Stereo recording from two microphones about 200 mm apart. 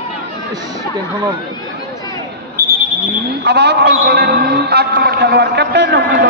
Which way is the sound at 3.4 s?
55° right (ahead or behind).